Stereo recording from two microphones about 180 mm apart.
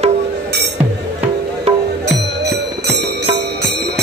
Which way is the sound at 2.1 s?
65° right (ahead or behind).